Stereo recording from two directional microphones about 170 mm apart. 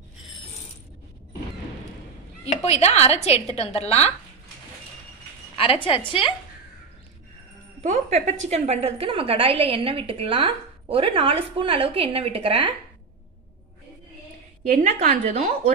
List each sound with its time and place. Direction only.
2.4 s a woman's voice: 40° left (ahead or behind)
5.6 s a woman's voice: 30° left (ahead or behind)
7.8 s a woman's voice: 45° right (ahead or behind)
14.7 s a woman's voice: 50° right (ahead or behind)